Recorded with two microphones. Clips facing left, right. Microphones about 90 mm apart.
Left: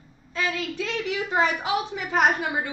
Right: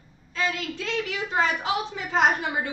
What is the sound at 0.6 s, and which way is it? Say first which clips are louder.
A woman's voice: left 1 dB; 20° left (ahead or behind).